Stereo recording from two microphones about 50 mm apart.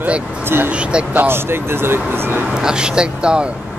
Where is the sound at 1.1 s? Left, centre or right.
Right.